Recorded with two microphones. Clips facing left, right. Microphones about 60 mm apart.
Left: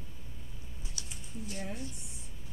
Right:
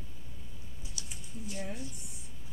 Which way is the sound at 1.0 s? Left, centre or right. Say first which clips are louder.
Left 1 dB; left.